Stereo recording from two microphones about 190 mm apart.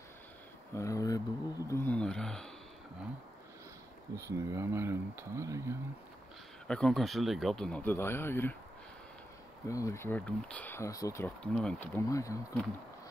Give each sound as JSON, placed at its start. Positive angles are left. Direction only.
{"t": 0.7, "sound": "speech", "side_deg": 15}
{"t": 4.1, "sound": "speech", "side_deg": -15}
{"t": 6.7, "sound": "speech", "side_deg": 5}
{"t": 9.7, "sound": "speech", "side_deg": 15}